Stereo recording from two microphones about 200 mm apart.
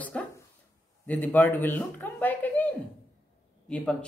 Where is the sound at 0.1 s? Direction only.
5° left (ahead or behind).